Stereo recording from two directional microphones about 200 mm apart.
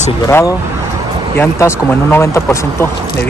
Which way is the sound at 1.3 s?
10° left (ahead or behind).